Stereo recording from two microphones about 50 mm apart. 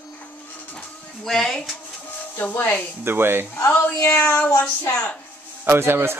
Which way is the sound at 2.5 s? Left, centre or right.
Left.